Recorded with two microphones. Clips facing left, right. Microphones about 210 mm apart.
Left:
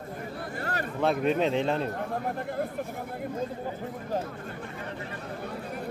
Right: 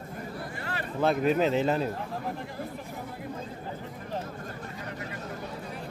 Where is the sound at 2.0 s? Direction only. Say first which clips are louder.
Left 3 dB; 55° left (ahead or behind).